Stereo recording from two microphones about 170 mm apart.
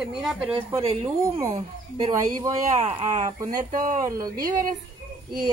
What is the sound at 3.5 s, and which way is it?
Speech, 55° right (ahead or behind).